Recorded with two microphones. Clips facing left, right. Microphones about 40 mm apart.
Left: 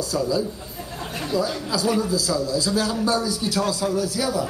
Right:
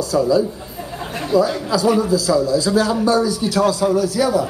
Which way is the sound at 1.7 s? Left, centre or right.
Right.